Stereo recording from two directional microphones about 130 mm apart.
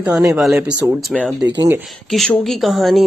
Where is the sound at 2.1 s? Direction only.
Centre (ahead or behind).